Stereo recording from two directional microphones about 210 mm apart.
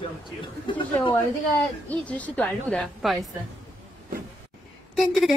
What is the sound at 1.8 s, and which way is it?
A woman's voice, 5° left (ahead or behind).